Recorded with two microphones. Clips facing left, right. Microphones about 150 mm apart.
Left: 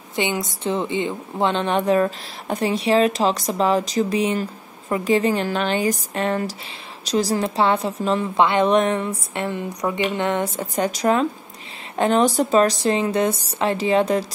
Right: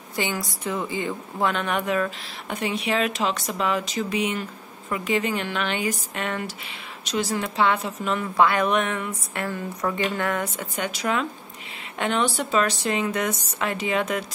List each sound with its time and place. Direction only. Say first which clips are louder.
0.1 s a woman's voice: left 4 dB; 20° left (ahead or behind)